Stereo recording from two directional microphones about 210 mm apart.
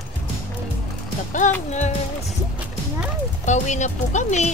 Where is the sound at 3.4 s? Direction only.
35° left (ahead or behind).